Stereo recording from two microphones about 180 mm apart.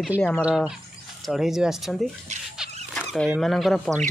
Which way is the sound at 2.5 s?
Centre (ahead or behind).